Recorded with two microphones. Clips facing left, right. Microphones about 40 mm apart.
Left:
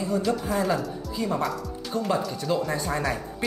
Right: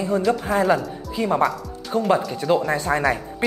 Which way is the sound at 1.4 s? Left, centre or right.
Centre.